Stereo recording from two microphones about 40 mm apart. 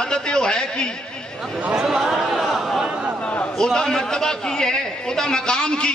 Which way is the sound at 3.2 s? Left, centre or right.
Left.